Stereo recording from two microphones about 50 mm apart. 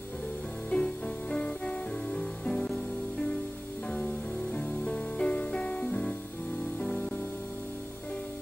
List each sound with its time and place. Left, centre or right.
0.7 s music: left
2.6 s music: centre
4.5 s music: centre